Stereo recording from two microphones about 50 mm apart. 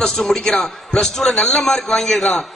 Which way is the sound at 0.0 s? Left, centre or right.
Centre.